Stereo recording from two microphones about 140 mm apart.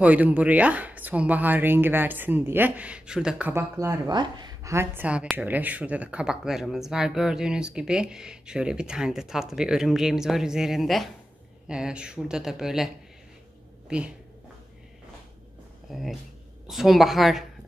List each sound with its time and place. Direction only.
0.0 s speech: 10° right (ahead or behind)
3.7 s speech: 25° right (ahead or behind)
4.7 s speech: 10° right (ahead or behind)
15.9 s speech: centre (ahead or behind)